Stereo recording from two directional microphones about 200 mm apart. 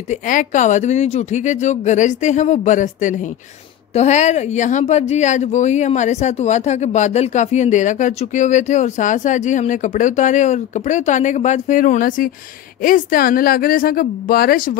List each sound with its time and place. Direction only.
0.1 s a woman's voice: 40° left (ahead or behind)